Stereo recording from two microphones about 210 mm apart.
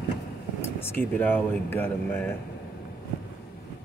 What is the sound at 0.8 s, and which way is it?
Speech, 10° left (ahead or behind).